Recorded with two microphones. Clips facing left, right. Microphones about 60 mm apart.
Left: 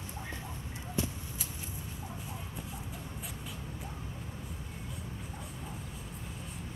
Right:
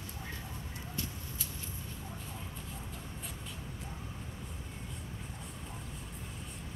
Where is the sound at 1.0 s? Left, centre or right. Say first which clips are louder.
Left 7 dB; centre.